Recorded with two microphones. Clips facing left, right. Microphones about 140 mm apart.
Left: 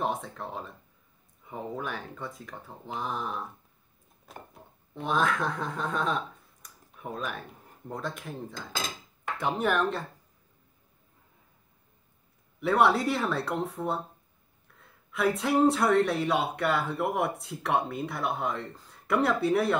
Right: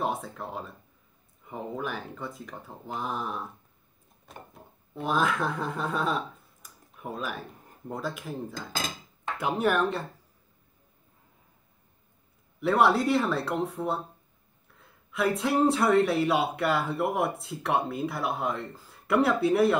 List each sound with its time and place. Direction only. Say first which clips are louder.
0.0 s speech: even; centre (ahead or behind)
12.5 s speech: right 1 dB; centre (ahead or behind)